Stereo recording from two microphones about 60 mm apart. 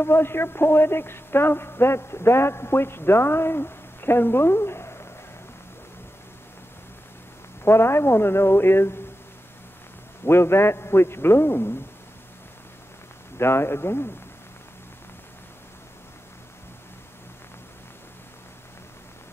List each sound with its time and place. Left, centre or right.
0.0 s speech: left
7.6 s a man's voice: left
10.2 s a man's voice: left
13.4 s a man's voice: left